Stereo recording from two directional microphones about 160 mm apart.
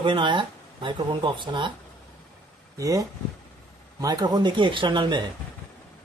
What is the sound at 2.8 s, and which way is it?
Speech, 20° right (ahead or behind).